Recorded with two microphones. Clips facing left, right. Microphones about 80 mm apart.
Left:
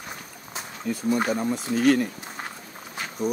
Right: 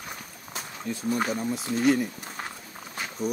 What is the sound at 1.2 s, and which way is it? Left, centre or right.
Speech, left.